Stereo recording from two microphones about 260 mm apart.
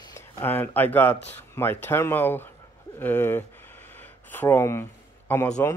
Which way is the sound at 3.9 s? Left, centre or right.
Centre.